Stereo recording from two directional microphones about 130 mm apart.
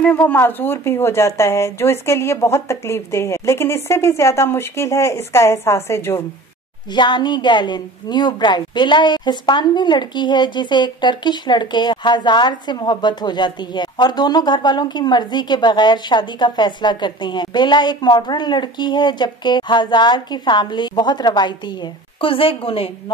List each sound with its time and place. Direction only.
0.0 s a woman's voice: 15° left (ahead or behind)
6.9 s a woman's voice: 35° left (ahead or behind)